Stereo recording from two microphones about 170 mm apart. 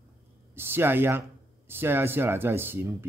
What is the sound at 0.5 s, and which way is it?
Speech, 15° right (ahead or behind).